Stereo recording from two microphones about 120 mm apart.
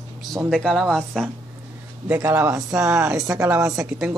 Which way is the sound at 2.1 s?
15° right (ahead or behind).